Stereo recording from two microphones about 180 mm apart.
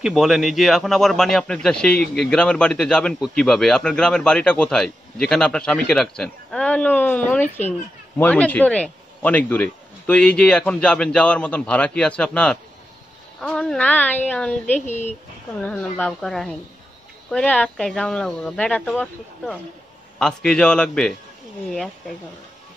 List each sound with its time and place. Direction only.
0.0 s a man's voice: centre (ahead or behind)
14.9 s speech: 40° left (ahead or behind)
15.6 s a man's voice: 5° left (ahead or behind)